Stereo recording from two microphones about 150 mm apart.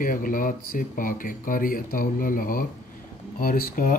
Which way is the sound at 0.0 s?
65° left (ahead or behind).